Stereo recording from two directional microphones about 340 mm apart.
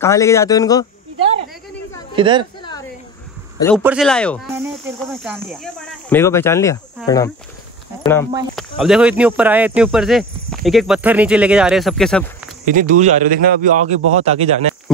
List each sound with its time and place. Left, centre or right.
0.0 s speech: centre
2.1 s a woman's voice: centre
3.5 s speech: centre
8.0 s speech: centre
12.7 s a man's voice: right